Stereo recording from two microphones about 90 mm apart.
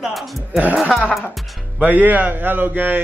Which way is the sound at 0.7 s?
Centre (ahead or behind).